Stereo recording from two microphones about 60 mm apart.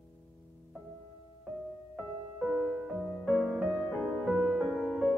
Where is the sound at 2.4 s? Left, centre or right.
Centre.